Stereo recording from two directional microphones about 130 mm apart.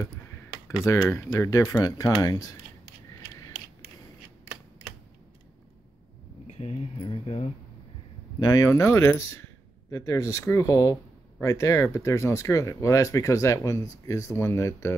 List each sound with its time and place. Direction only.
0.8 s speech: 25° left (ahead or behind)
6.4 s speech: 50° left (ahead or behind)
8.4 s speech: 30° left (ahead or behind)